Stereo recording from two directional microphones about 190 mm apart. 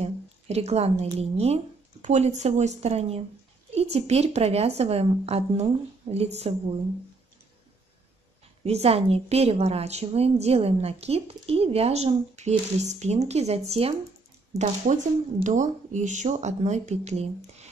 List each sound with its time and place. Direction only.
0.0 s a sound: 35° right (ahead or behind)
1.1 s a woman's voice: 30° right (ahead or behind)
8.6 s a woman's voice: 30° right (ahead or behind)